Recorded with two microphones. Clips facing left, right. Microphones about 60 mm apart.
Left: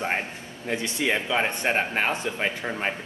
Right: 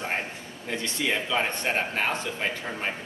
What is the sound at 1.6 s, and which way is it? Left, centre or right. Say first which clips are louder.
Speech: left 3 dB; left.